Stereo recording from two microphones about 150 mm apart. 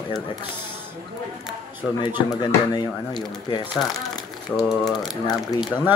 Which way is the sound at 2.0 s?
30° left (ahead or behind).